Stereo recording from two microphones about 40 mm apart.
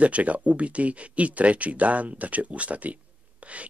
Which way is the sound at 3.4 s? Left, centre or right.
Right.